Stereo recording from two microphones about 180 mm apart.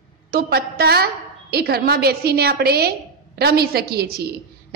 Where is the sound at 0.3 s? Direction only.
60° right (ahead or behind).